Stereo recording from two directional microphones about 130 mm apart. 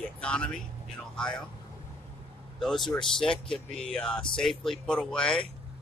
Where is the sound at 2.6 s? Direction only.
Centre (ahead or behind).